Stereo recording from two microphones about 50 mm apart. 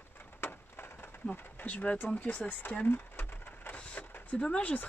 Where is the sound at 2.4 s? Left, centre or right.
Left.